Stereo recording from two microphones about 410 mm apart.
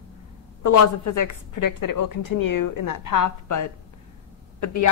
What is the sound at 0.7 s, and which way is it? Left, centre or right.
A woman's voice, left.